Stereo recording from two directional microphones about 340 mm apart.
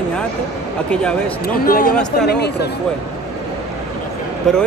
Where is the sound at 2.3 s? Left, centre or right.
Left.